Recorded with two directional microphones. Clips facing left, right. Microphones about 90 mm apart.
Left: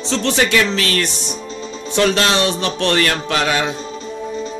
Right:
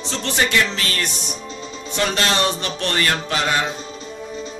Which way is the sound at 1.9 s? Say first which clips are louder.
Left 5 dB; 75° left (ahead or behind).